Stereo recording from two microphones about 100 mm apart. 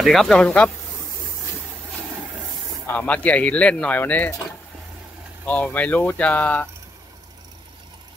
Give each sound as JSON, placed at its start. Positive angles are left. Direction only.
{"t": 0.0, "sound": "speech", "side_deg": 0}
{"t": 2.9, "sound": "speech", "side_deg": 15}
{"t": 5.4, "sound": "speech", "side_deg": 15}